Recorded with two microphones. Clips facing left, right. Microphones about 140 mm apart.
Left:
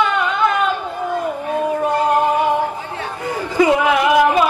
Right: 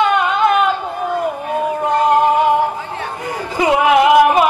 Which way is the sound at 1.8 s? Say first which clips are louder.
Right 4 dB; 15° right (ahead or behind).